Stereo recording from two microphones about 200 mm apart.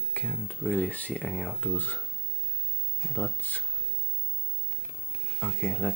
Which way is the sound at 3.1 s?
10° left (ahead or behind).